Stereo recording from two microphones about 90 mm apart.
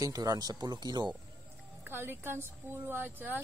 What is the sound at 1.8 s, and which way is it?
A woman's voice, 25° right (ahead or behind).